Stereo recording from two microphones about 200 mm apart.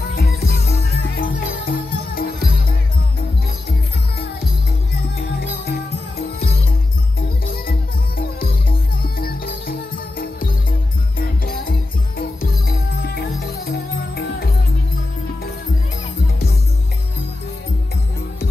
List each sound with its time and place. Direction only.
0.1 s music: 50° left (ahead or behind)
5.7 s music: 50° left (ahead or behind)